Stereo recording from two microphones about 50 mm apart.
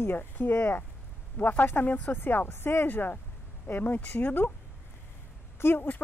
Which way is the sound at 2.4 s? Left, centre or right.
Left.